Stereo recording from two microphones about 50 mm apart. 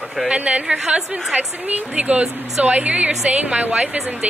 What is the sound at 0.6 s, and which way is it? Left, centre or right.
Speech, centre.